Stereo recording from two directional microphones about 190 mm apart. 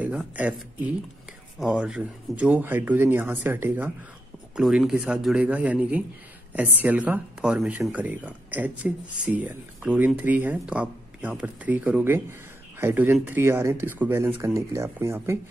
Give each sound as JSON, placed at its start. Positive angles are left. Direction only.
{"t": 0.0, "sound": "speech", "side_deg": -10}